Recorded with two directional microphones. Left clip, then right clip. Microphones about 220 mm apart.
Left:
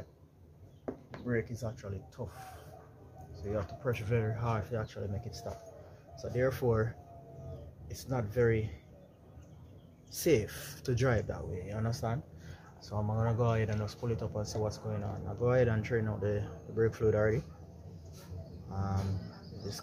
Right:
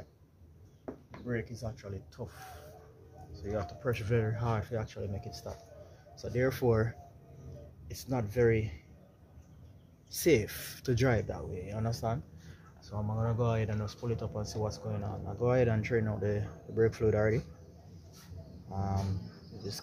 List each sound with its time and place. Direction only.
1.2 s speech: 5° right (ahead or behind); by 5.5 s 20° right (ahead or behind)
6.1 s speech: 30° right (ahead or behind)
10.1 s speech: 30° right (ahead or behind)
12.8 s speech: centre (ahead or behind); by 17.4 s 25° right (ahead or behind)
18.7 s speech: 25° right (ahead or behind)